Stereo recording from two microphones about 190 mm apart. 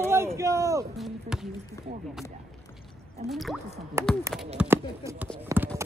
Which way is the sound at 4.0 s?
15° right (ahead or behind).